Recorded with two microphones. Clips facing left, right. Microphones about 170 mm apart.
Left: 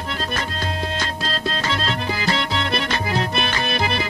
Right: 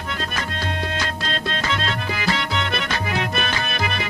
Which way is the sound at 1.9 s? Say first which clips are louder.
Left 1 dB; 30° left (ahead or behind).